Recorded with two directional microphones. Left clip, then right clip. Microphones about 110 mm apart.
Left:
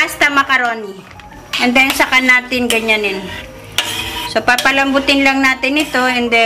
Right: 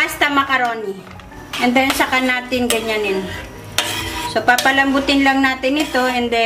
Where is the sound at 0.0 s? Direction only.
35° left (ahead or behind).